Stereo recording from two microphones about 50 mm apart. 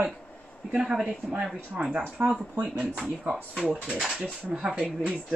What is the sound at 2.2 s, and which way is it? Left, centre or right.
Speech, right.